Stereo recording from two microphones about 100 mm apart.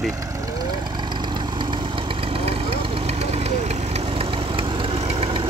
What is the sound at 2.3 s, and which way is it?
Vehicle, 65° right (ahead or behind).